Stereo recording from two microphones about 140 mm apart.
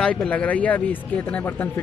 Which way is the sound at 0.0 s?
5° left (ahead or behind).